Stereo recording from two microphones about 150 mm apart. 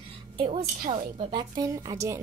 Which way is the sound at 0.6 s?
70° right (ahead or behind).